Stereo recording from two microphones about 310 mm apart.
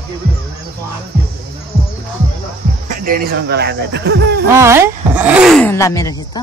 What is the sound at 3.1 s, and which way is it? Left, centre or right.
Speech, right.